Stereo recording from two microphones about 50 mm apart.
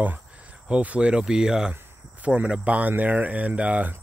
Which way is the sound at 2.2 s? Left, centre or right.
Right.